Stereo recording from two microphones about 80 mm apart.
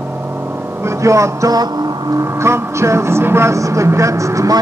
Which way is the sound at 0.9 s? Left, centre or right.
Right.